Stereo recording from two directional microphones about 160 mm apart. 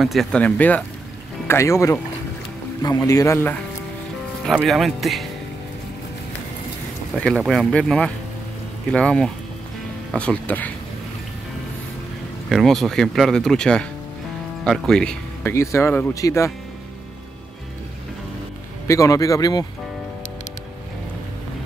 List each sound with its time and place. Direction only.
0.0 s a man's voice: centre (ahead or behind); by 3.5 s 20° left (ahead or behind)
4.5 s speech: centre (ahead or behind)
7.2 s speech: 5° left (ahead or behind)
12.4 s a man's voice: centre (ahead or behind); by 16.5 s 20° left (ahead or behind)
18.9 s a man's voice: 20° left (ahead or behind)